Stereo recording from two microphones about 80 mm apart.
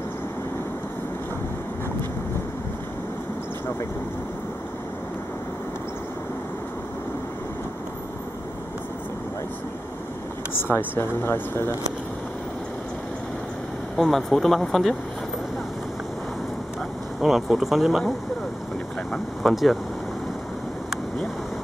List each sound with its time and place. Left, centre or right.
10.5 s speech: left
13.9 s speech: centre
17.2 s speech: centre
19.1 s speech: centre